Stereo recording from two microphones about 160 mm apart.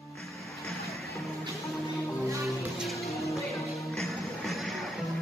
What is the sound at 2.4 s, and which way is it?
Music, centre (ahead or behind).